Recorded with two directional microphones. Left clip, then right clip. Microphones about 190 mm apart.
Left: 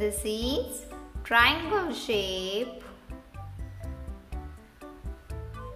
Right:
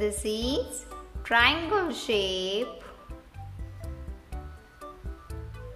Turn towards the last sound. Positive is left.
turn(degrees=0)  # may be behind; listen again after turning